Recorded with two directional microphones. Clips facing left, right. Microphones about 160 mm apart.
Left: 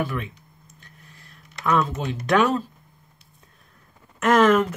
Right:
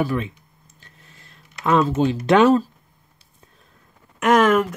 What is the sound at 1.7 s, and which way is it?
Speech, 30° right (ahead or behind).